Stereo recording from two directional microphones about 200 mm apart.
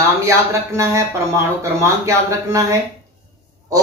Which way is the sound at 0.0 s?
15° right (ahead or behind).